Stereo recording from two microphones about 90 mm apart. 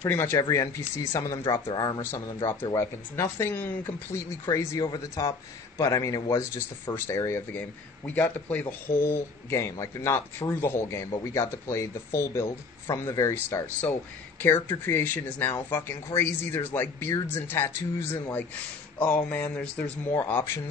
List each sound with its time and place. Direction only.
0.0 s speech: 25° left (ahead or behind)
0.4 s speech: 35° left (ahead or behind)
1.7 s speech: 45° left (ahead or behind)
2.0 s speech: 30° left (ahead or behind)
4.5 s speech: 40° left (ahead or behind)
8.1 s speech: 20° left (ahead or behind)
20.2 s speech: 25° left (ahead or behind)